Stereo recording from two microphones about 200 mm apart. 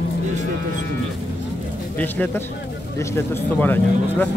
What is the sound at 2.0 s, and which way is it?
Speech, 10° left (ahead or behind).